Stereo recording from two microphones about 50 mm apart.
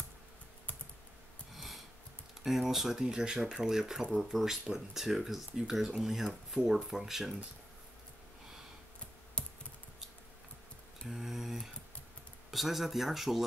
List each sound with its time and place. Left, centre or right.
1.5 s a sound: centre
2.4 s speech: centre
9.4 s computer keyboard: left
11.1 s mantra: centre
12.4 s speech: centre